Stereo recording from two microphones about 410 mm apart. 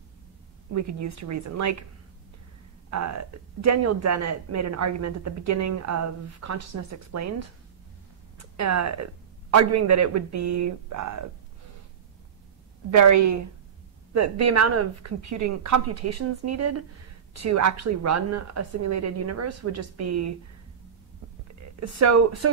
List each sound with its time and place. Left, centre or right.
1.0 s speech: right
2.9 s a woman's voice: right
12.9 s a woman's voice: right
21.7 s a woman's voice: right